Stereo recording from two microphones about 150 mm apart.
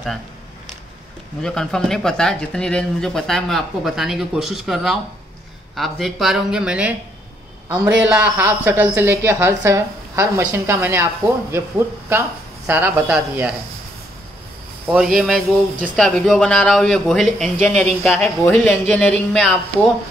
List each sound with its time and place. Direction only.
1.4 s a man's voice: 5° left (ahead or behind); by 13.0 s 15° right (ahead or behind)
14.9 s speech: 5° right (ahead or behind)
18.2 s speech: 15° left (ahead or behind)